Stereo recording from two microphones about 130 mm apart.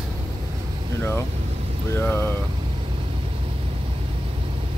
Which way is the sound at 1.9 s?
15° left (ahead or behind).